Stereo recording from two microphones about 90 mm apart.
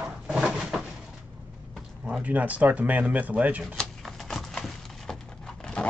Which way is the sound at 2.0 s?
15° right (ahead or behind).